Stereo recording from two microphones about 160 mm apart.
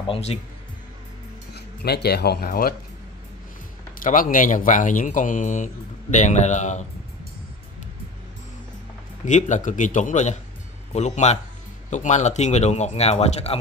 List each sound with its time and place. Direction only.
0.0 s speech: 35° left (ahead or behind)
1.5 s speech: 85° left; by 2.7 s 70° left (ahead or behind)
4.0 s speech: 60° left (ahead or behind)
9.2 s speech: 50° left (ahead or behind)